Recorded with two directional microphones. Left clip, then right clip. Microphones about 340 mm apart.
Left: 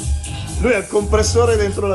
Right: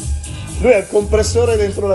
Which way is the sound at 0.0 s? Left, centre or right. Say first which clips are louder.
Left 1 dB; centre.